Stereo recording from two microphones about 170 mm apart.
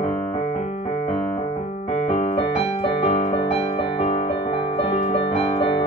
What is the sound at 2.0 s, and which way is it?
Keyboard, 35° left (ahead or behind).